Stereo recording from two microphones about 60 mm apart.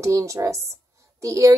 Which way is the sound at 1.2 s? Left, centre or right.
Right.